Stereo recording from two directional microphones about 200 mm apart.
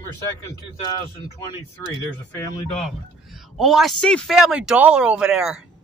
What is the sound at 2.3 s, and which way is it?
Speech, 15° left (ahead or behind).